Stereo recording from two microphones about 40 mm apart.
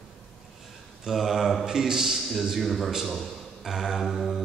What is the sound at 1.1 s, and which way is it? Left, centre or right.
Speech, centre.